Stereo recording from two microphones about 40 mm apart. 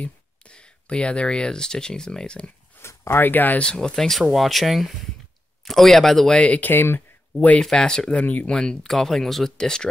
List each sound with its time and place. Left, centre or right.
0.0 s speech: left
2.8 s a sound: left
3.3 s speech: left
3.6 s speech: left
4.2 s speech: centre
6.3 s speech: left
6.6 s speech: left
7.7 s speech: centre
8.2 s speech: left
8.5 s speech: left
8.8 s speech: centre
9.6 s speech: centre